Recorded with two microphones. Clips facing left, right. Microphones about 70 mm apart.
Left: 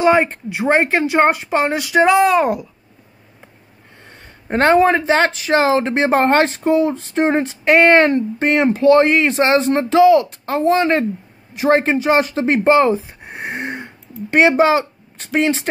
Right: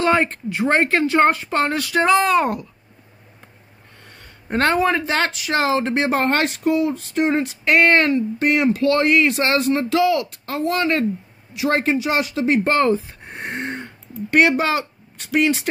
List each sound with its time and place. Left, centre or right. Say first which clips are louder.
0.0 s speech: left 4 dB; centre
2.1 s speech: left 3 dB; centre
4.0 s speech: left 3 dB; left
12.6 s speech: left 5 dB; centre
13.3 s gasp: left 2 dB; centre
14.3 s speech: left 4 dB; left